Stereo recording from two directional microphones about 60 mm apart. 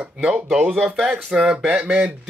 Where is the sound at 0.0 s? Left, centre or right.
Right.